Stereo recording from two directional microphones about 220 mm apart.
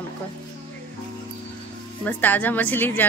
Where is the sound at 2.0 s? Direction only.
5° left (ahead or behind).